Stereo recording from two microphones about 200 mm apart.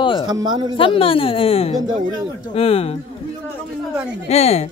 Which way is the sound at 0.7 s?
25° left (ahead or behind).